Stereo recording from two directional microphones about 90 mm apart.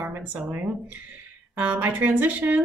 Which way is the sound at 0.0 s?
25° right (ahead or behind).